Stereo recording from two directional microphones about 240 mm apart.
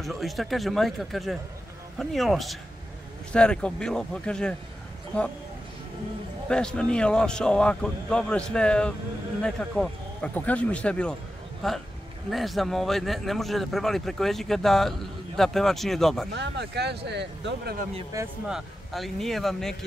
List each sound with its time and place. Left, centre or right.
0.0 s speech: centre
6.5 s speech: centre
16.3 s speech: right
18.1 s speech: centre